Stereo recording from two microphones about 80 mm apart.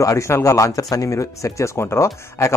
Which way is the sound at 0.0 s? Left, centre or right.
Left.